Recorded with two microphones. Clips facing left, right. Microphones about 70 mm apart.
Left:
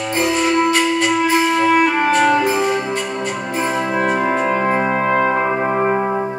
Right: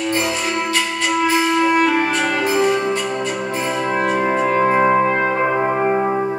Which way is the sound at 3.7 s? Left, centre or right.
Centre.